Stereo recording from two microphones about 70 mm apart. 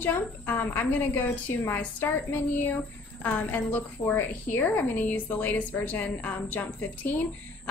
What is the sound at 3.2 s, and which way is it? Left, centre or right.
A woman's voice, left.